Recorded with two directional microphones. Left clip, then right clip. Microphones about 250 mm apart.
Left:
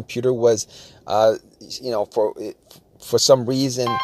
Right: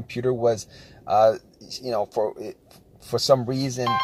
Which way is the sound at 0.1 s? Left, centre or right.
Left.